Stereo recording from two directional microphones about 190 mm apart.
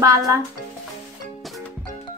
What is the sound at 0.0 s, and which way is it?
Speech, 15° right (ahead or behind).